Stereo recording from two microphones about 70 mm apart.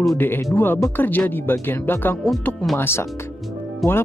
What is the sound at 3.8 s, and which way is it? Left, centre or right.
Speech, centre.